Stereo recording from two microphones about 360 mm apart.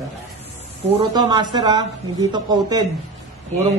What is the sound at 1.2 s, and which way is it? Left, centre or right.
Speech, centre.